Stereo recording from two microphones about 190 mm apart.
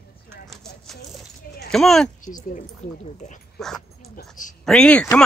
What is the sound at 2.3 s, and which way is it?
Speech, 40° left (ahead or behind).